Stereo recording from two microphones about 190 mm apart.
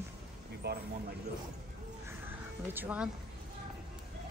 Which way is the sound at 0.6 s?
55° right (ahead or behind).